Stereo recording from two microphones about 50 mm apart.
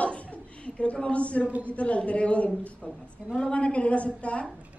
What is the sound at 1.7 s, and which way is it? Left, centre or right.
A man's voice, left.